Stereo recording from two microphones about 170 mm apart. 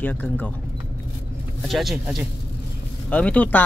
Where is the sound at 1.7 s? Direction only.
Centre (ahead or behind).